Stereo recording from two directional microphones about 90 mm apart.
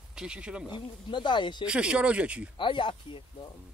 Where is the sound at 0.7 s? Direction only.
60° left (ahead or behind).